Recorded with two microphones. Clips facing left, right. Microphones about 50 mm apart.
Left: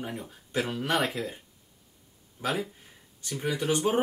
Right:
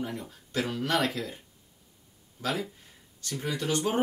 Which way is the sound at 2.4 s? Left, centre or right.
Left.